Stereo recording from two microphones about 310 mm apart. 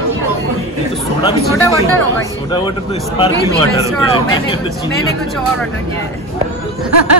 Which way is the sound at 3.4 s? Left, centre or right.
Centre.